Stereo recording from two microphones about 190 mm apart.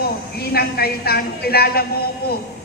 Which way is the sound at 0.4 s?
55° left (ahead or behind).